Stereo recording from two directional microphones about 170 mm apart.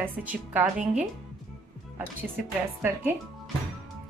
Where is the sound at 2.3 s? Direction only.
10° right (ahead or behind).